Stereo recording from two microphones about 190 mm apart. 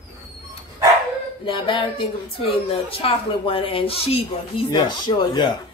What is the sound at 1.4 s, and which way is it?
Speech, 25° left (ahead or behind).